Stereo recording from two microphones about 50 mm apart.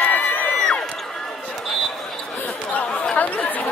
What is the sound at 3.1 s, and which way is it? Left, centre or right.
Chatter, left.